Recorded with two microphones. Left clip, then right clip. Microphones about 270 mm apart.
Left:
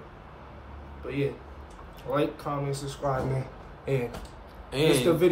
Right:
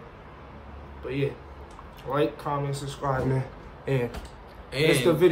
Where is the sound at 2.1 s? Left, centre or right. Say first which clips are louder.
Right 2 dB; centre.